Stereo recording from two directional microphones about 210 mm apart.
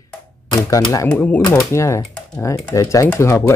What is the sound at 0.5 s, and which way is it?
Speech, 20° left (ahead or behind).